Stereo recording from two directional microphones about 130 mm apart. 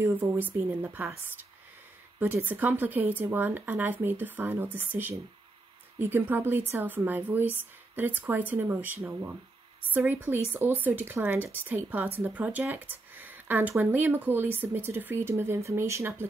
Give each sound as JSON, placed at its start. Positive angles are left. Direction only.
{"t": 0.0, "sound": "speech", "side_deg": -15}